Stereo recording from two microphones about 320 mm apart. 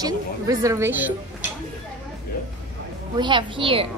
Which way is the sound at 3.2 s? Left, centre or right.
Centre.